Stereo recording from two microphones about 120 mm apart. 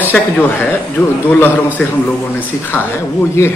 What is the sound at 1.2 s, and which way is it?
A man's voice, 15° left (ahead or behind).